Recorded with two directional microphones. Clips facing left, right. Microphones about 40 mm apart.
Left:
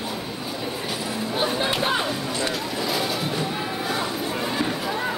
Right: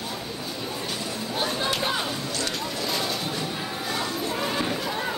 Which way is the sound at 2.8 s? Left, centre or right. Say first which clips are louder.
Left 3 dB; centre.